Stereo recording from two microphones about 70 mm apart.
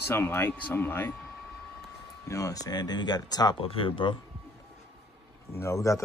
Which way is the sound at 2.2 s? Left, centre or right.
Left.